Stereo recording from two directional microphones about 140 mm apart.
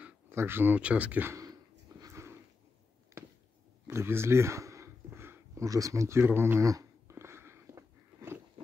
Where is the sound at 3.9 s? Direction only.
20° right (ahead or behind).